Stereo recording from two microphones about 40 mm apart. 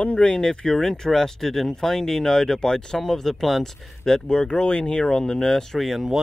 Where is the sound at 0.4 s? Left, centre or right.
Centre.